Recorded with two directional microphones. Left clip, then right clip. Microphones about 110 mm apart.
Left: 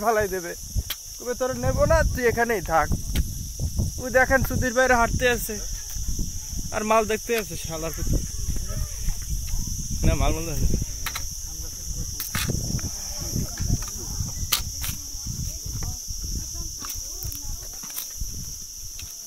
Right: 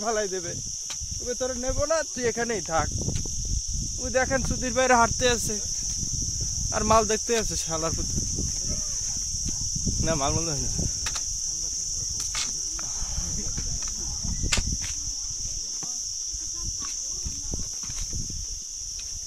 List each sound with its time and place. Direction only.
0.0 s speech: 5° right (ahead or behind)
1.5 s speech: 10° right (ahead or behind)
4.1 s speech: centre (ahead or behind)
4.8 s speech: 30° right (ahead or behind)
6.7 s speech: 25° right (ahead or behind)
10.0 s speech: 40° right (ahead or behind)